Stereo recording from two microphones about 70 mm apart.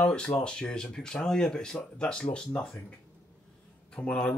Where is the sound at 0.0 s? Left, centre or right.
Centre.